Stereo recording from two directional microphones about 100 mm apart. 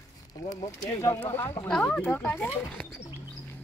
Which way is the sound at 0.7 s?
30° left (ahead or behind).